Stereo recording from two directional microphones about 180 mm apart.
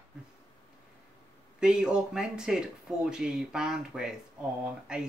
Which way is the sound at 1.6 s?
5° right (ahead or behind).